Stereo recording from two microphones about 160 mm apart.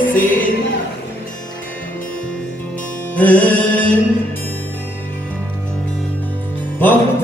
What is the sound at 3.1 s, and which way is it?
Music, 10° left (ahead or behind).